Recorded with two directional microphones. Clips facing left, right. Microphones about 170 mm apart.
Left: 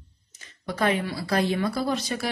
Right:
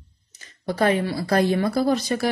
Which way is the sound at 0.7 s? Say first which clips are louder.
Right 4 dB; 40° right (ahead or behind).